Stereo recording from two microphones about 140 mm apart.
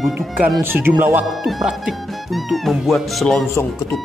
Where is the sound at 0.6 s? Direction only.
15° right (ahead or behind).